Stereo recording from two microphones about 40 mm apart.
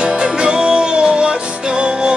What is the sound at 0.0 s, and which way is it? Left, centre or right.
Music, right.